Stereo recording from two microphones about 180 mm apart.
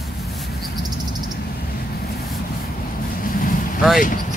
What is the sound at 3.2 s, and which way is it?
Vehicle, 50° left (ahead or behind).